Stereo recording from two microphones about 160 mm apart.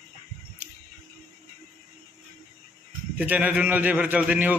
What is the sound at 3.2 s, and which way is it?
A man's voice, 10° right (ahead or behind).